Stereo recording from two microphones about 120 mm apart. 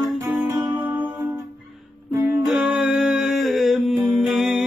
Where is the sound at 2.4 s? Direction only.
5° right (ahead or behind).